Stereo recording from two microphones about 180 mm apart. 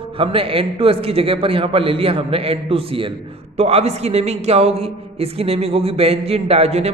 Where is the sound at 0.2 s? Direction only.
30° right (ahead or behind).